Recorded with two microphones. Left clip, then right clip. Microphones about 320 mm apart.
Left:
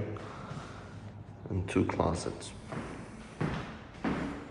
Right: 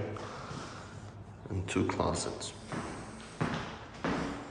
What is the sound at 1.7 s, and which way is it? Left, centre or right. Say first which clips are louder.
Speech: left 1 dB; centre.